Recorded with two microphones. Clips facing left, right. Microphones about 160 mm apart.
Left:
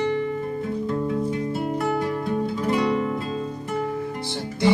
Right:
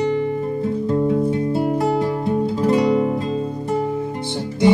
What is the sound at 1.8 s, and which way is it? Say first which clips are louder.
Music: right 5 dB; 30° right (ahead or behind).